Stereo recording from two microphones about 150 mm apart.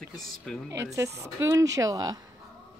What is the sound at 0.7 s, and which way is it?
A woman's voice, 20° right (ahead or behind).